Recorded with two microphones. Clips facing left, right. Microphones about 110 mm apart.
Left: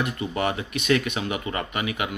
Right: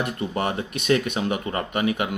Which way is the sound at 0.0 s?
40° right (ahead or behind).